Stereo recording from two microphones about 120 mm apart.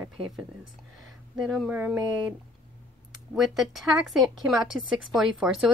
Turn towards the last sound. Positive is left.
turn(degrees=-5)  # may be behind; listen again after turning